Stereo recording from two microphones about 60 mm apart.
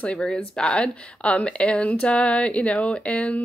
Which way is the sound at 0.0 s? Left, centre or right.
Centre.